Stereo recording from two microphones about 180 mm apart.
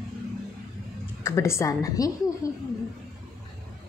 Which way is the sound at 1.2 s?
15° left (ahead or behind).